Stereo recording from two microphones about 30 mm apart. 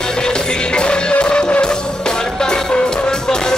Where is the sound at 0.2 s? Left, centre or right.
Left.